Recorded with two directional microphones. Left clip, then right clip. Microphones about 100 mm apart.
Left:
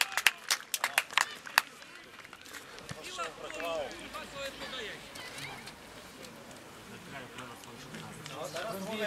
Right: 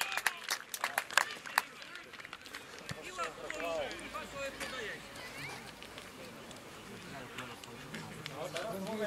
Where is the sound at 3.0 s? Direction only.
5° left (ahead or behind).